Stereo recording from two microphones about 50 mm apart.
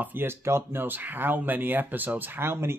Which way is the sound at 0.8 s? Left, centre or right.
Right.